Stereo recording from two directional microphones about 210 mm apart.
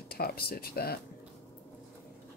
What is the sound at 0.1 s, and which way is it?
Speech, 45° left (ahead or behind).